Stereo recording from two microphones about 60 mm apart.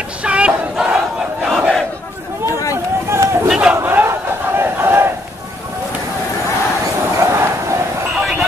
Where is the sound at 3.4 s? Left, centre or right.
Centre.